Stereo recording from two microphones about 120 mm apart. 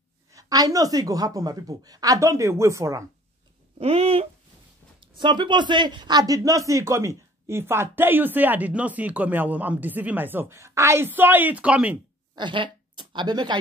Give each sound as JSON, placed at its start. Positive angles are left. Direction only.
{"t": 0.3, "sound": "a woman's voice", "side_deg": -30}
{"t": 3.8, "sound": "a sound", "side_deg": -55}
{"t": 5.0, "sound": "speech", "side_deg": -40}
{"t": 12.4, "sound": "speech", "side_deg": -40}